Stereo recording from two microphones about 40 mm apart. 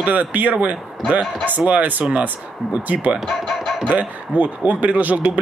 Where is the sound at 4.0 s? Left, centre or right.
Right.